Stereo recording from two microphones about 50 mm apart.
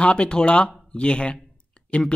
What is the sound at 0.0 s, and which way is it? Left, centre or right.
Speech, left.